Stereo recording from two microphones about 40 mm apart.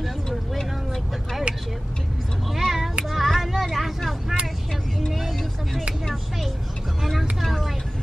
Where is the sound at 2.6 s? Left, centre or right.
Centre.